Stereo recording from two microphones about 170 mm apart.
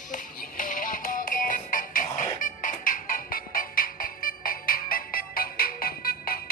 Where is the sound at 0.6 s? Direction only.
55° left (ahead or behind).